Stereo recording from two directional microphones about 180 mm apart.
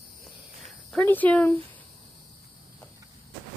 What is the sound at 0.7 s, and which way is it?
Cricket, centre (ahead or behind).